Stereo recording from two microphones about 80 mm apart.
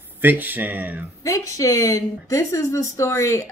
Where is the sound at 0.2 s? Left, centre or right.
Right.